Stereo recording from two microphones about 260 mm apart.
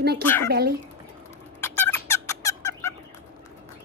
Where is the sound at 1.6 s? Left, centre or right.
Centre.